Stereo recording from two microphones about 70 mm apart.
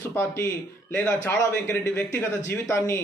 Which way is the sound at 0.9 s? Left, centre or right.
Left.